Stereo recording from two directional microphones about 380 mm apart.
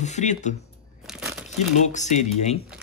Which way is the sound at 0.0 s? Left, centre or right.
Centre.